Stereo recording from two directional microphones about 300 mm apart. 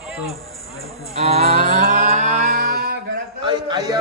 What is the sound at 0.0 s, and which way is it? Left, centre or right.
Music, centre.